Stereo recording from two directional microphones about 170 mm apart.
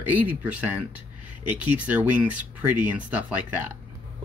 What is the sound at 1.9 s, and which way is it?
Speech, 10° right (ahead or behind).